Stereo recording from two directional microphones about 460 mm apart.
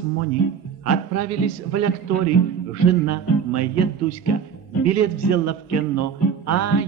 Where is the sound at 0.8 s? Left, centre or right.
Right.